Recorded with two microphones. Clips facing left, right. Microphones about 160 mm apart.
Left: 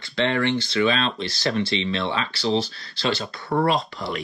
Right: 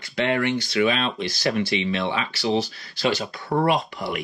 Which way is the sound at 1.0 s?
15° right (ahead or behind).